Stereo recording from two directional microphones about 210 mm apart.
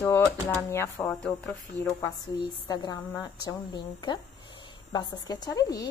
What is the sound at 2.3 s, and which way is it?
Speech, 20° left (ahead or behind).